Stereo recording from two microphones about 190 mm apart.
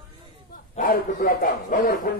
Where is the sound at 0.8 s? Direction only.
45° left (ahead or behind).